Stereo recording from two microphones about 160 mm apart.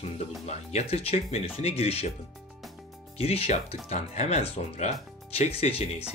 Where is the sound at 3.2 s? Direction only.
40° left (ahead or behind).